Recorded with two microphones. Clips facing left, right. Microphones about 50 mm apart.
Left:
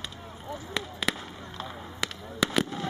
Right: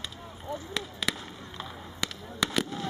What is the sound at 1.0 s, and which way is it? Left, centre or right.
Fireworks, centre.